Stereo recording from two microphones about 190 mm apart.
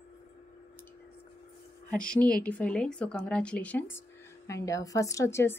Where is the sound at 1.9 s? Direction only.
5° left (ahead or behind).